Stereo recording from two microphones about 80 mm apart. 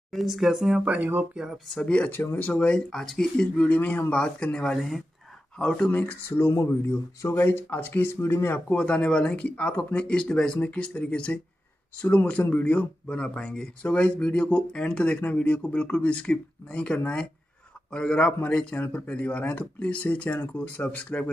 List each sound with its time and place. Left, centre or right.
0.1 s speech: centre
0.9 s speech: right
1.3 s speech: centre
1.8 s speech: centre
5.9 s speech: left